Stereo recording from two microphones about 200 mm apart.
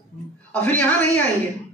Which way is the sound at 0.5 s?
10° left (ahead or behind).